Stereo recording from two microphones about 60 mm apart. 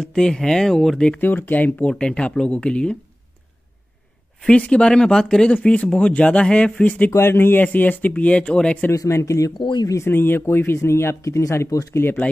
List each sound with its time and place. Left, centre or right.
0.0 s speech: centre
1.2 s speech: left
1.9 s speech: centre
4.4 s speech: centre
7.1 s speech: left
7.6 s speech: left
8.9 s speech: left
10.0 s speech: left